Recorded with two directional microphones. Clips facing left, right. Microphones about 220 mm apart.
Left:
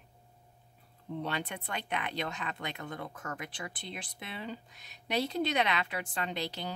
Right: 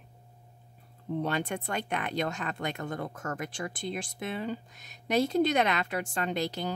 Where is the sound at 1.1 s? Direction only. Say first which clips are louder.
Right 6 dB; 45° right (ahead or behind).